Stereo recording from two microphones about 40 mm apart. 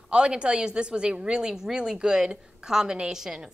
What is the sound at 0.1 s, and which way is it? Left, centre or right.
A woman's voice, right.